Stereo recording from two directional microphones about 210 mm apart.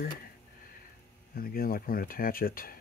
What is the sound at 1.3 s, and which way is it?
Speech, 45° left (ahead or behind).